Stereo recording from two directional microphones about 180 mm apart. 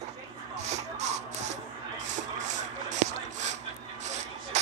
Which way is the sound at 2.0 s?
40° right (ahead or behind).